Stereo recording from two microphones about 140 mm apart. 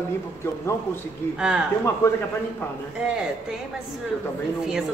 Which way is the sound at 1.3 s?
5° right (ahead or behind).